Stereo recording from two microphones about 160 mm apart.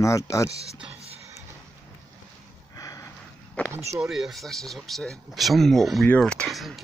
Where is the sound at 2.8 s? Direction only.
20° left (ahead or behind).